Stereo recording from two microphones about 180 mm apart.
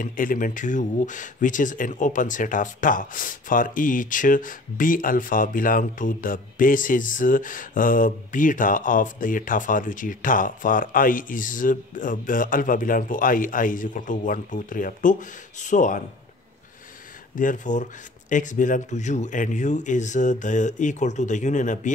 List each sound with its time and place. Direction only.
0.0 s speech: 50° left (ahead or behind)
17.4 s speech: 45° left (ahead or behind)